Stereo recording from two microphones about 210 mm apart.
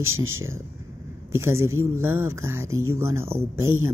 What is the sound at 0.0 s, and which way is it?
Speech, 75° right (ahead or behind).